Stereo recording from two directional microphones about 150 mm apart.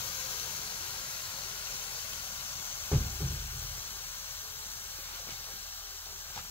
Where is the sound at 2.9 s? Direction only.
15° left (ahead or behind).